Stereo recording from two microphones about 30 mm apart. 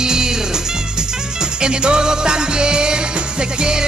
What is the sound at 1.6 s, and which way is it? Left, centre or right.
Music, right.